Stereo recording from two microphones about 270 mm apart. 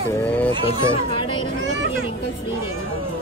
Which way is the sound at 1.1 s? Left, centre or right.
Centre.